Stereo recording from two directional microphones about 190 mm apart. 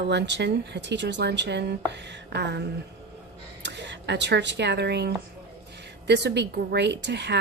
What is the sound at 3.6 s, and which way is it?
A woman's voice, 65° right (ahead or behind).